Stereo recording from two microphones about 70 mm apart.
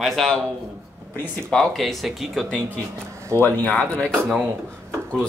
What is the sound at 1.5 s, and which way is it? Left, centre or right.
Speech, centre.